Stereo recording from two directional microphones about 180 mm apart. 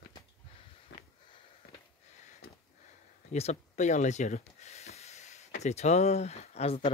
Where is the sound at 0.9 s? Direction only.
75° left (ahead or behind).